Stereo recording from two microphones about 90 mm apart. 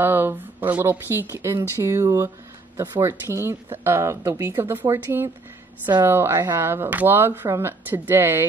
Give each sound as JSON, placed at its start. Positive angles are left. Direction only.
{"t": 0.0, "sound": "speech", "side_deg": -25}